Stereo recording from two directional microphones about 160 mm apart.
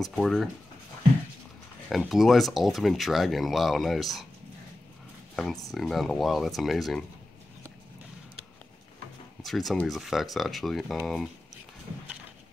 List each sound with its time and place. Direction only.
0.0 s speech: centre (ahead or behind)
1.9 s speech: centre (ahead or behind)
5.3 s speech: centre (ahead or behind)
9.4 s speech: centre (ahead or behind)